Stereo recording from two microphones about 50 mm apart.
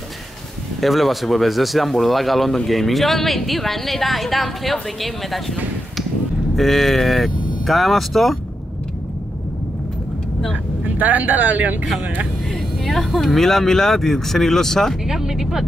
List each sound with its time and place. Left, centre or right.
0.7 s speech: centre
11.0 s speech: right
12.8 s speech: centre
15.0 s speech: centre